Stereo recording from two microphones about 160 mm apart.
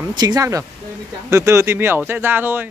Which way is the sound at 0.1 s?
25° right (ahead or behind).